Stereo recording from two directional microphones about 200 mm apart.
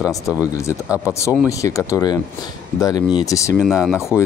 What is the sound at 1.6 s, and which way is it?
Speech, 15° left (ahead or behind).